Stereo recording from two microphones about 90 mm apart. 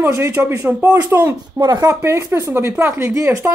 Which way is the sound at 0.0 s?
30° right (ahead or behind).